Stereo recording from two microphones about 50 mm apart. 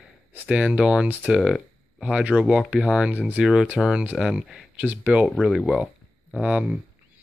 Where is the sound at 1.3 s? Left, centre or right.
Centre.